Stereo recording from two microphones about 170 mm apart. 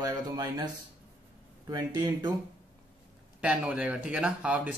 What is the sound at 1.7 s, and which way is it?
Speech, 25° right (ahead or behind).